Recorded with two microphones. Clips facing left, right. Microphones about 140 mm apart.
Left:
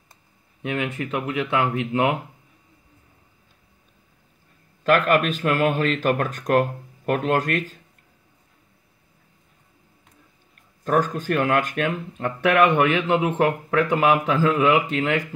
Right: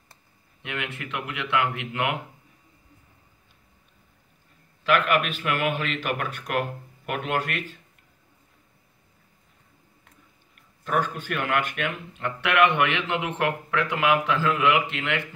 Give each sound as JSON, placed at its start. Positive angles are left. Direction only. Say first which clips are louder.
{"t": 0.6, "sound": "speech", "louder": "left 8 dB", "side_deg": 40}
{"t": 4.8, "sound": "speech", "louder": "left 4 dB", "side_deg": 40}
{"t": 10.8, "sound": "speech", "louder": "left 5 dB", "side_deg": 40}